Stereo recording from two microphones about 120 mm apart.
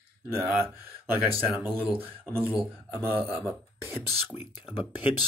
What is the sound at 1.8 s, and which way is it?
Speech, 15° right (ahead or behind).